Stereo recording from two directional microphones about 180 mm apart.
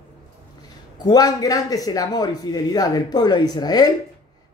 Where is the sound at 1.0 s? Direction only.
20° left (ahead or behind).